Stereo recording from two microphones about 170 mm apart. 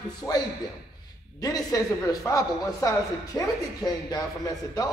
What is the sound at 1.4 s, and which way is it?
A man's voice, 20° left (ahead or behind).